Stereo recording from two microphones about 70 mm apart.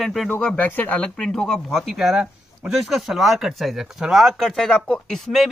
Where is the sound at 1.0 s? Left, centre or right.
Centre.